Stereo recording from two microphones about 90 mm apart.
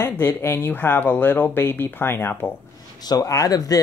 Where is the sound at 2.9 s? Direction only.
45° left (ahead or behind).